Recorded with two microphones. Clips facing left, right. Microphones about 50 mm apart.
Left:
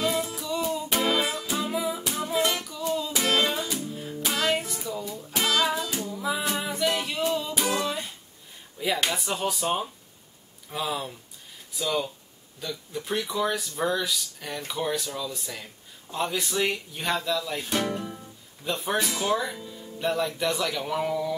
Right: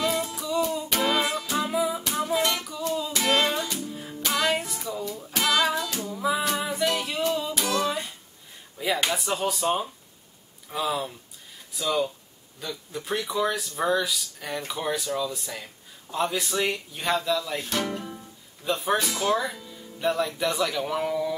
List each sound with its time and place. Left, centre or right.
0.0 s music: centre
3.9 s music: centre
6.0 s music: centre
7.5 s music: centre
7.8 s music: centre
8.7 s speech: centre